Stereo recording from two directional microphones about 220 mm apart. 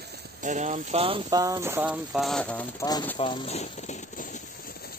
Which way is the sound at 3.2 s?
25° left (ahead or behind).